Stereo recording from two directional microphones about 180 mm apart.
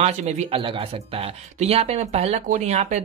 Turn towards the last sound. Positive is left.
turn(degrees=-40)  # may be behind; listen again after turning